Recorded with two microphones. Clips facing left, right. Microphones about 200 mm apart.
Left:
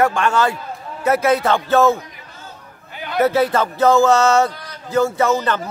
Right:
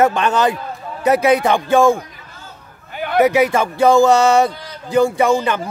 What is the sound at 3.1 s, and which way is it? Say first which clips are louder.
Speech: right 2 dB; 15° right (ahead or behind).